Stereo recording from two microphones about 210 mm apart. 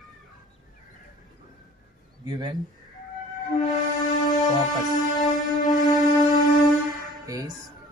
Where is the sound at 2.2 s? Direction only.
20° right (ahead or behind).